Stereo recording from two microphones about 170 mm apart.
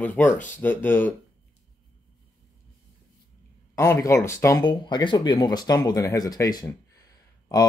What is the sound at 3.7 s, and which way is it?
Speech, 15° left (ahead or behind).